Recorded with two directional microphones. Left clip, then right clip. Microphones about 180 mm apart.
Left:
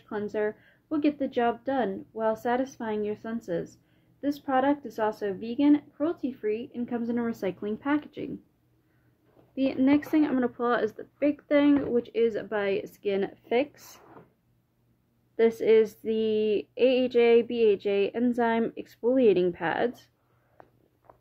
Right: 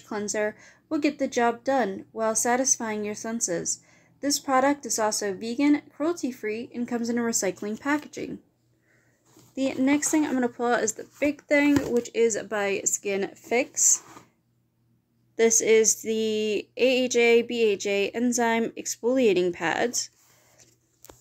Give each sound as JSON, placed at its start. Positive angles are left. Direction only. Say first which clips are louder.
{"t": 0.1, "sound": "a woman's voice", "louder": "right 2 dB", "side_deg": -20}
{"t": 9.6, "sound": "speech", "louder": "even", "side_deg": -10}
{"t": 15.3, "sound": "a woman's voice", "louder": "right 1 dB", "side_deg": -5}
{"t": 16.1, "sound": "speech", "louder": "even", "side_deg": 50}
{"t": 16.5, "sound": "speech", "louder": "right 3 dB", "side_deg": -10}
{"t": 17.5, "sound": "speech", "louder": "even", "side_deg": 50}
{"t": 17.7, "sound": "speech", "louder": "right 1 dB", "side_deg": -5}